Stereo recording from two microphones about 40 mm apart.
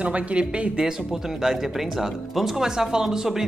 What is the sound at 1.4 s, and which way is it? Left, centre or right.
Speech, centre.